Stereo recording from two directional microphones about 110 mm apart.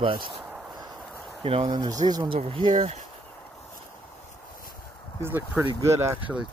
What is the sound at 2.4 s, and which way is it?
Speech, 50° right (ahead or behind).